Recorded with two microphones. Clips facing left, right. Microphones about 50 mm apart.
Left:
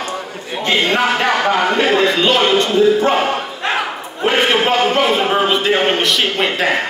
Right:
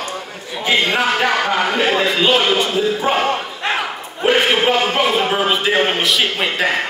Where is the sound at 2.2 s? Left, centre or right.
Centre.